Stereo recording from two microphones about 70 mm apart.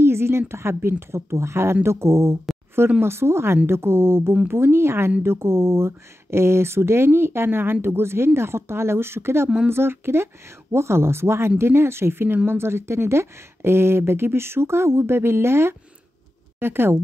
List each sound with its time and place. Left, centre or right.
0.0 s a woman's voice: right